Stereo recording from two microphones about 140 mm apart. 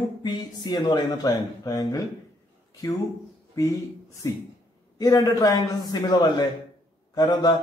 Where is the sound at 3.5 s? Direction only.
25° left (ahead or behind).